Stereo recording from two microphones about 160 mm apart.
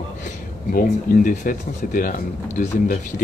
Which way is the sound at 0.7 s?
60° left (ahead or behind).